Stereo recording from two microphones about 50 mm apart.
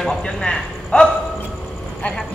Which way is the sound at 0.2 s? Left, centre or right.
Centre.